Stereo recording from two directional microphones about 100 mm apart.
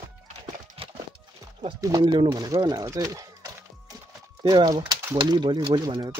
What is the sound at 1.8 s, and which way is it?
Speech, 35° right (ahead or behind).